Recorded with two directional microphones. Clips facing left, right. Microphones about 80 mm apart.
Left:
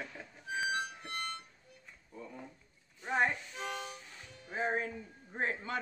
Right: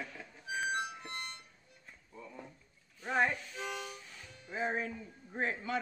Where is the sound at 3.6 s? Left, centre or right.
Left.